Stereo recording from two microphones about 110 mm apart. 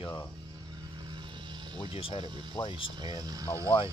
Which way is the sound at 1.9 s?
60° left (ahead or behind).